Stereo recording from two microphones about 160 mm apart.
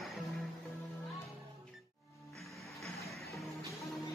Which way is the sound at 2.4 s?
Centre (ahead or behind).